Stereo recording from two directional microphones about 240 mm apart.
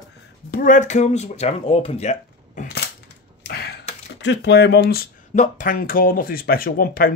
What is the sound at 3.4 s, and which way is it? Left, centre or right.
Typewriter, left.